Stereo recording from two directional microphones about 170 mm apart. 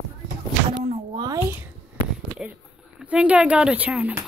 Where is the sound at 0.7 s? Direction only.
25° right (ahead or behind).